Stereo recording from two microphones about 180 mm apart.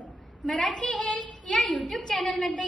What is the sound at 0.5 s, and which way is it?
A woman's voice, centre (ahead or behind).